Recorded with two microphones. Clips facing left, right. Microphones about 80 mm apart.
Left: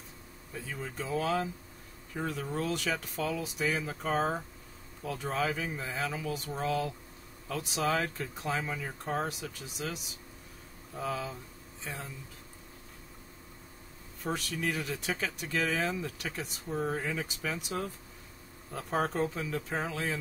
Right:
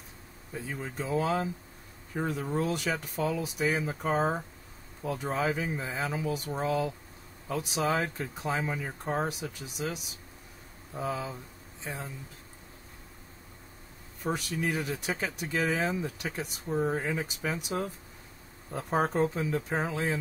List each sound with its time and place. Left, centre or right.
0.6 s speech: centre
14.2 s speech: centre